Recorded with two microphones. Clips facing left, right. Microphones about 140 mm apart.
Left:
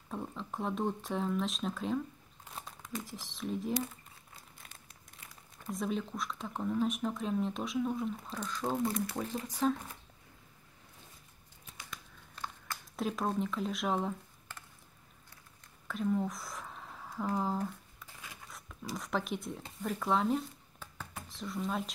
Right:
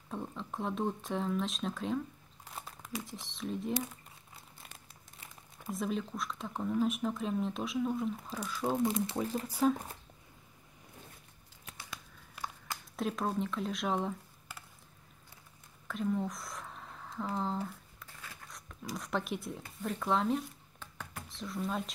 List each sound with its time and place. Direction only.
0.1 s speech: centre (ahead or behind)
5.7 s speech: centre (ahead or behind)
8.8 s speech: 25° right (ahead or behind)
9.1 s speech: 5° right (ahead or behind)
12.9 s speech: centre (ahead or behind)
15.9 s speech: centre (ahead or behind)
18.2 s a sound: 15° left (ahead or behind)
18.9 s speech: centre (ahead or behind)